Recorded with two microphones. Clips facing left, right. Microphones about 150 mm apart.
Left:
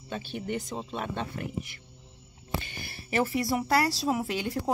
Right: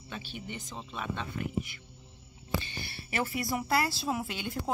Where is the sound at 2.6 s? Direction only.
45° left (ahead or behind).